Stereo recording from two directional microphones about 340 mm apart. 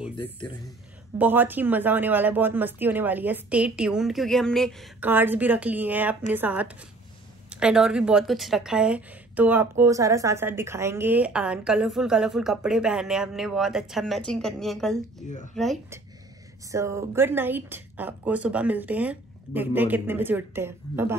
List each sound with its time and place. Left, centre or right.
1.1 s a woman's voice: centre